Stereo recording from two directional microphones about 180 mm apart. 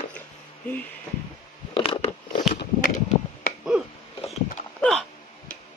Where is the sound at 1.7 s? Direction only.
30° left (ahead or behind).